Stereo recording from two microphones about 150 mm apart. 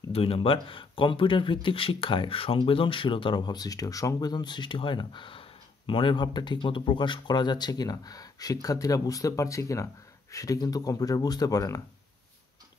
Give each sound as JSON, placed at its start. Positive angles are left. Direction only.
{"t": 0.1, "sound": "speech", "side_deg": 40}